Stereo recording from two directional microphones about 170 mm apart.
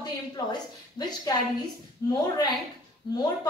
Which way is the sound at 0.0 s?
25° left (ahead or behind).